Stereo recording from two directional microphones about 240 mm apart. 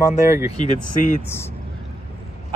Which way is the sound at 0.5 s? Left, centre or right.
Left.